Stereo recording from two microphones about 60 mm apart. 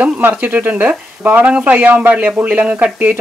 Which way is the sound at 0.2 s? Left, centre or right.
Right.